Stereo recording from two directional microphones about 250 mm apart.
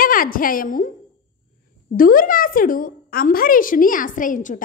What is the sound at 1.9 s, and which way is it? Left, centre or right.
A woman's voice, left.